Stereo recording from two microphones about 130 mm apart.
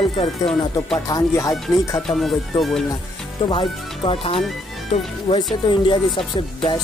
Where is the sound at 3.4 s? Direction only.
40° left (ahead or behind).